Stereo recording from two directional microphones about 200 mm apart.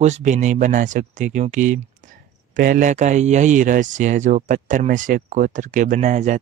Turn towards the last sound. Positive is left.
turn(degrees=-35)  # may be behind; listen again after turning